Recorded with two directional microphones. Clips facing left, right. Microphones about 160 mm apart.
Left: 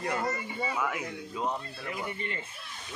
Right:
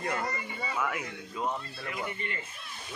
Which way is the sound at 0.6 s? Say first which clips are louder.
Right 1 dB; 10° left (ahead or behind).